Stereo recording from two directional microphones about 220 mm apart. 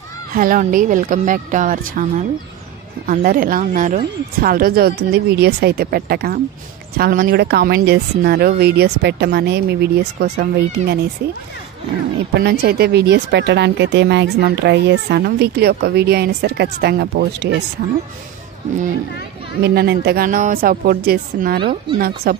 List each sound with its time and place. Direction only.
0.3 s speech: 40° right (ahead or behind)
3.1 s speech: 40° right (ahead or behind)
12.4 s speech: 45° right (ahead or behind)
19.6 s speech: 45° right (ahead or behind)